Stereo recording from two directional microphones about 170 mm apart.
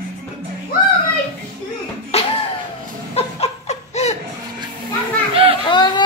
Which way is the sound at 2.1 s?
35° left (ahead or behind).